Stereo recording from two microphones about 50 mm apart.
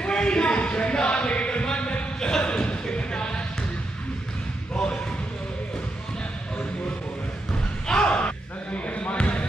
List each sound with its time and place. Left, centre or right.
0.0 s a sound: centre
7.9 s slam: left
8.7 s basketball bounce: left